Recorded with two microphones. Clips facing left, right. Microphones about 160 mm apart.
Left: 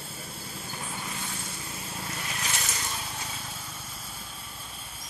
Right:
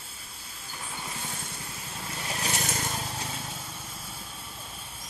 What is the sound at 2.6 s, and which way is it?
Vehicle, 50° right (ahead or behind).